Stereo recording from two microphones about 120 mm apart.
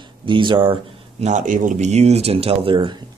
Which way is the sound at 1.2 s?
90° right.